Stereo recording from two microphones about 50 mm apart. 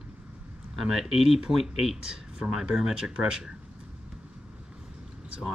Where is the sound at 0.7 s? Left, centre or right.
Centre.